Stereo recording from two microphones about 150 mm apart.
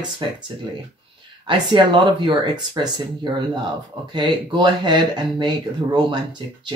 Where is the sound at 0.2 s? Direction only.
30° right (ahead or behind).